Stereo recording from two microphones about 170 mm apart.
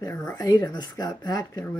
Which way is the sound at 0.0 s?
20° left (ahead or behind).